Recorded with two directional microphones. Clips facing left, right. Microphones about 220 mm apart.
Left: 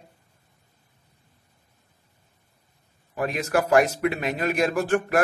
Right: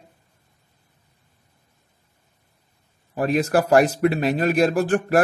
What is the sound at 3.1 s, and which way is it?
A man's voice, 35° right (ahead or behind).